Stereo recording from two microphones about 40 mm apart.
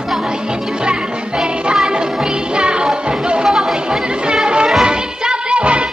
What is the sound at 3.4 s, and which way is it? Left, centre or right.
Chatter, centre.